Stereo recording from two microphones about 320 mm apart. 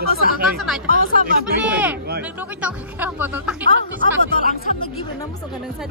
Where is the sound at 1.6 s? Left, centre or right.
Centre.